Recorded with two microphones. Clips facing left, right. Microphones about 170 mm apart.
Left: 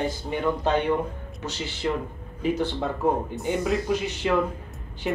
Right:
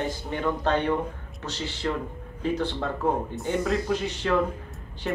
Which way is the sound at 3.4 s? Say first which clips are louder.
Left 1 dB; 10° left (ahead or behind).